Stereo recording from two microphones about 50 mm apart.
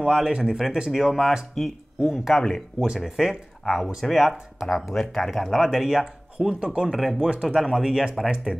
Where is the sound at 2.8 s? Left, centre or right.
Centre.